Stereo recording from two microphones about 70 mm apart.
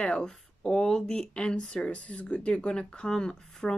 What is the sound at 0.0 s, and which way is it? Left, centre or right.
Speech, centre.